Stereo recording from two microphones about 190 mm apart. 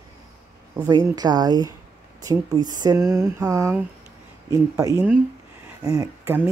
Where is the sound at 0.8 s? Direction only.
20° right (ahead or behind).